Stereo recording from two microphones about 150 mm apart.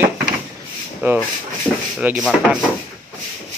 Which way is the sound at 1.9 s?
5° right (ahead or behind).